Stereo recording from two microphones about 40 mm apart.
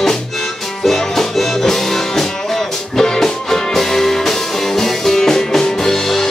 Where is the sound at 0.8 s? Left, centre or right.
Centre.